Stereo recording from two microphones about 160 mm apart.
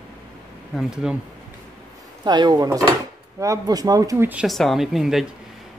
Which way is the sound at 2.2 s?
30° right (ahead or behind).